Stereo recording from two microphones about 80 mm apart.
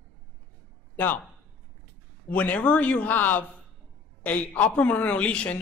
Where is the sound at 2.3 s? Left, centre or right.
Centre.